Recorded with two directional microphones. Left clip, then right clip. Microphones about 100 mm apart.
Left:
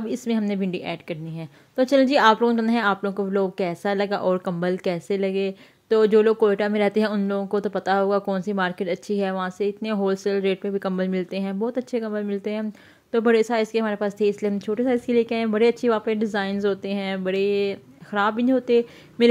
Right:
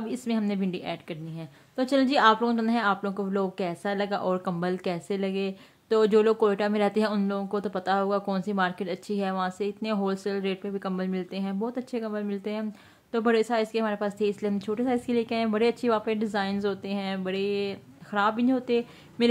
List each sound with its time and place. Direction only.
0.0 s a woman's voice: 30° left (ahead or behind)